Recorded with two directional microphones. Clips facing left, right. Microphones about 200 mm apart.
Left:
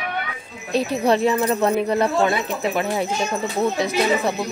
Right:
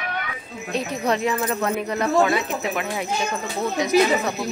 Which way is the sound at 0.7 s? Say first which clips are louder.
Left 5 dB; 30° left (ahead or behind).